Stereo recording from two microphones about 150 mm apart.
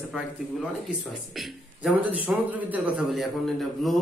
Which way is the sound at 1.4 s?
Centre (ahead or behind).